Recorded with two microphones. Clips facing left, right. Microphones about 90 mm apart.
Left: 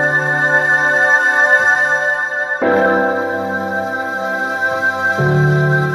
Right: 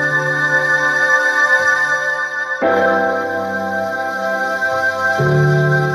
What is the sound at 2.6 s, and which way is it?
Music, 5° left (ahead or behind).